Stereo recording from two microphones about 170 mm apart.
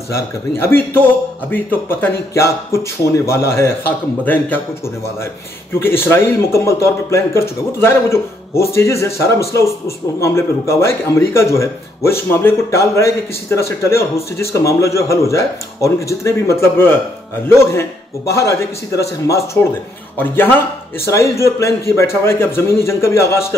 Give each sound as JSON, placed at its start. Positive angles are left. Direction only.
{"t": 0.1, "sound": "speech", "side_deg": 15}